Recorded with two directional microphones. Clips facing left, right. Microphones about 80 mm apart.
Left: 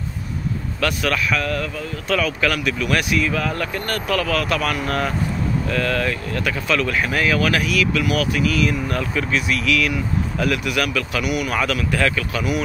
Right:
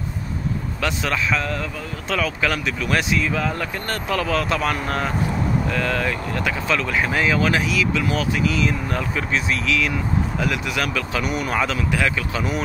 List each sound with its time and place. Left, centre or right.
0.7 s speech: right